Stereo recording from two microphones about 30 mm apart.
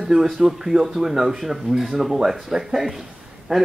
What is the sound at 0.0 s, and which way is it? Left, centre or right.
Speech, centre.